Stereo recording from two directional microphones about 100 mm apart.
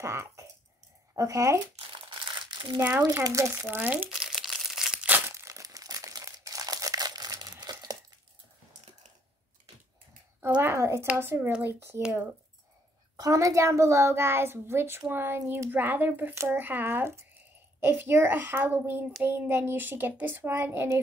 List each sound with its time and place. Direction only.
0.0 s rattle: 30° right (ahead or behind)
1.1 s speech: 35° right (ahead or behind)
1.8 s crumpling: 55° right (ahead or behind)
3.0 s a child's voice: 35° right (ahead or behind); by 4.1 s 20° right (ahead or behind)
4.2 s crumpling: centre (ahead or behind)
5.3 s crumpling: 30° right (ahead or behind)
10.5 s a child's voice: 20° right (ahead or behind)
13.1 s a child's voice: 35° right (ahead or behind)